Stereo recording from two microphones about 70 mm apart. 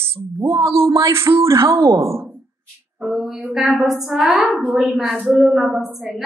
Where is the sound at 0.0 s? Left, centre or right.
Right.